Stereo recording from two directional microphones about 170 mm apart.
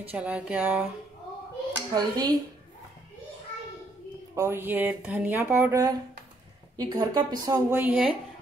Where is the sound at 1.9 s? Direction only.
25° right (ahead or behind).